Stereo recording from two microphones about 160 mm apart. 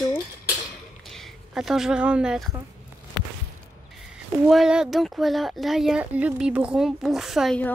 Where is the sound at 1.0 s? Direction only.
Centre (ahead or behind).